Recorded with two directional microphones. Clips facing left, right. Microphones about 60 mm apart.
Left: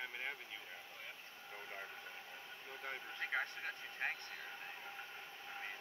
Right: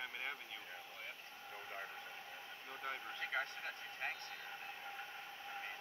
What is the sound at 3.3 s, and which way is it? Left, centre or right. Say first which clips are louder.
Speech: left 1 dB; left.